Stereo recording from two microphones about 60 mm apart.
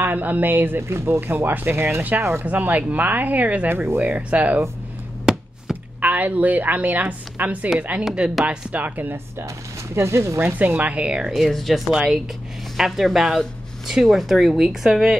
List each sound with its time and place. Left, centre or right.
0.0 s speech: right
1.2 s speech: right
2.4 s a woman's voice: right
3.6 s speech: right
4.0 s a woman's voice: centre
5.2 s chop: centre
5.9 s a woman's voice: right
8.0 s a woman's voice: centre; by 9.1 s right
9.9 s speech: right
10.8 s a woman's voice: right
11.2 s speech: centre